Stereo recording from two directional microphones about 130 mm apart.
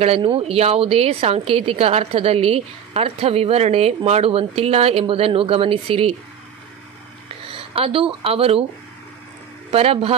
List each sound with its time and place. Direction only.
0.0 s a woman's voice: 50° right (ahead or behind)
7.4 s speech: 45° right (ahead or behind)
9.7 s a woman's voice: 50° right (ahead or behind)